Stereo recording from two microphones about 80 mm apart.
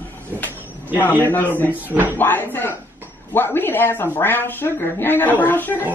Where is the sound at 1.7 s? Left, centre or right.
Right.